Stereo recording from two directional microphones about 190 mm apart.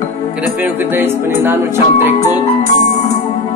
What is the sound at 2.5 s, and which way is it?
Music, 35° left (ahead or behind).